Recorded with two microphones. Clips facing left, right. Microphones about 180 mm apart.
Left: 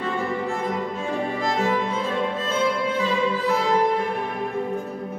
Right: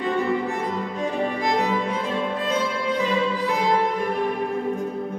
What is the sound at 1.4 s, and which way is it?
Music, 15° right (ahead or behind).